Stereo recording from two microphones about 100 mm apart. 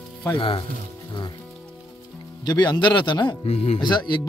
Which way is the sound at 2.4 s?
45° left (ahead or behind).